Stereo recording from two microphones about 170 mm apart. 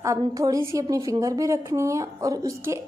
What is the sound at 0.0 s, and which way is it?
A woman's voice, 20° right (ahead or behind).